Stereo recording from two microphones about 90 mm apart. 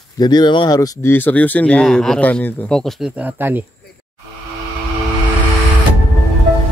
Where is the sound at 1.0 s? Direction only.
20° left (ahead or behind); by 2.2 s 5° left (ahead or behind).